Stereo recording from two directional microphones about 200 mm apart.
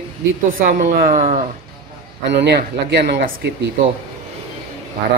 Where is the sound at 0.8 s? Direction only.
45° right (ahead or behind).